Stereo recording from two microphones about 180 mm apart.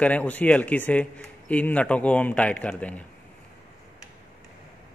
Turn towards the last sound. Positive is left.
turn(degrees=10)  # may be behind; listen again after turning